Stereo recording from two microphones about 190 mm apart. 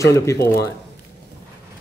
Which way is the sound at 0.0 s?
15° left (ahead or behind).